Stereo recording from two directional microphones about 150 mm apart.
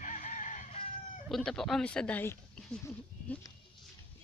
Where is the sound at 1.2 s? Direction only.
Centre (ahead or behind).